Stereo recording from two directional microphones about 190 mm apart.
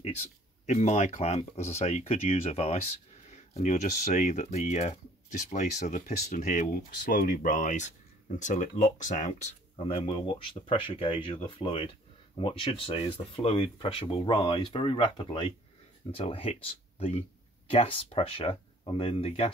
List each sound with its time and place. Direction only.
0.7 s speech: 35° left (ahead or behind)
10.0 s speech: 30° left (ahead or behind)